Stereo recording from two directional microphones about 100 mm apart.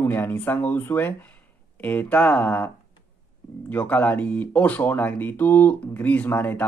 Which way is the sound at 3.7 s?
15° left (ahead or behind).